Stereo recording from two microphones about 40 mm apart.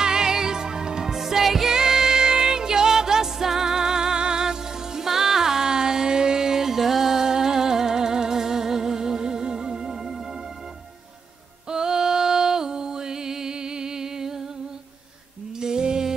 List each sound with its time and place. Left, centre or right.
0.0 s music: centre
11.7 s music: centre
15.6 s music: centre